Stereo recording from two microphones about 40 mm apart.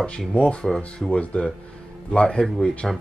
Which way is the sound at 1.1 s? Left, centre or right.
Left.